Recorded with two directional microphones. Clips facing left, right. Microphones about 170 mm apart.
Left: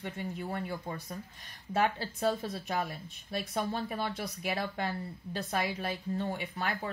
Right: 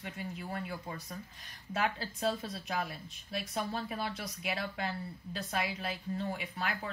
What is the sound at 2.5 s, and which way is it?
A woman's voice, 45° left (ahead or behind).